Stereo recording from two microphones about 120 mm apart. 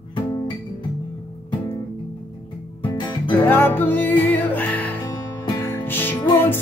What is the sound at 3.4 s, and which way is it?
Music, 20° left (ahead or behind).